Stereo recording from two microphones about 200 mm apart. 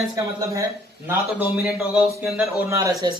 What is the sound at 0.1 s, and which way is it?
A man's voice, 15° right (ahead or behind).